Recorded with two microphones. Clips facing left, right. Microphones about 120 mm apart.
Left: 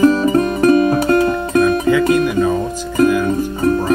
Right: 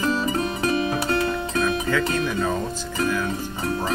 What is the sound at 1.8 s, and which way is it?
Music, 15° left (ahead or behind).